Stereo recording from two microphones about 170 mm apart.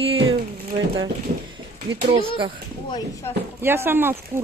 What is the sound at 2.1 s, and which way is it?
Speech, 30° right (ahead or behind).